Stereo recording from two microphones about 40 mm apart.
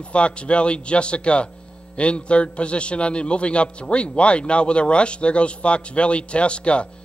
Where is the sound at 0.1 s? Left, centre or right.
Left.